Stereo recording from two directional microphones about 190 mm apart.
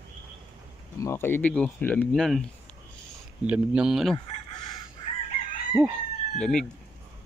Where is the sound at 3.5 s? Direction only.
5° right (ahead or behind).